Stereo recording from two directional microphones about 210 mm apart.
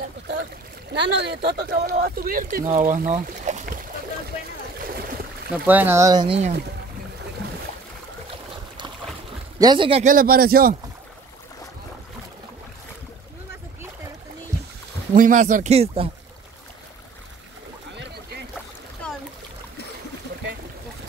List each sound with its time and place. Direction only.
0.9 s speech: 55° right (ahead or behind); by 3.8 s 40° right (ahead or behind)
5.7 s speech: 10° right (ahead or behind); by 6.5 s 25° right (ahead or behind)
9.6 s speech: 20° right (ahead or behind)
10.0 s speech: 45° right (ahead or behind)
15.1 s speech: 40° right (ahead or behind)
19.0 s splash: 5° left (ahead or behind)